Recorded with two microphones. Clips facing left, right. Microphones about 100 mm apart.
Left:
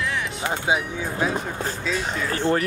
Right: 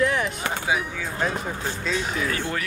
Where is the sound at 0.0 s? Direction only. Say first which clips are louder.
Right 4 dB; 45° right (ahead or behind).